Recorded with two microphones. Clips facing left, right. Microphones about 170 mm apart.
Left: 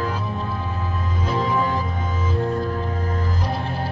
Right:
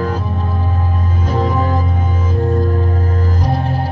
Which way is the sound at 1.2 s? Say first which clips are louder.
Right 4 dB; 45° right (ahead or behind).